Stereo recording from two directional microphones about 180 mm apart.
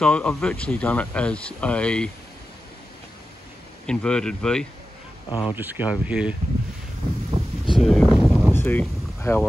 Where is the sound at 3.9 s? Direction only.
5° left (ahead or behind).